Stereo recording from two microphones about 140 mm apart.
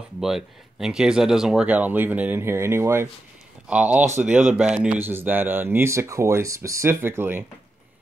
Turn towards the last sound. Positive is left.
turn(degrees=-15)  # may be behind; listen again after turning